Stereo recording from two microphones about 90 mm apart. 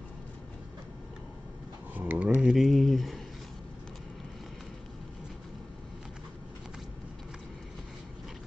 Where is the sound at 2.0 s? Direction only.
20° right (ahead or behind).